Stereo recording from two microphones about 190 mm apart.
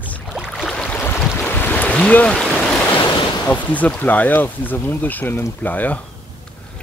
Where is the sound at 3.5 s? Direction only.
10° left (ahead or behind).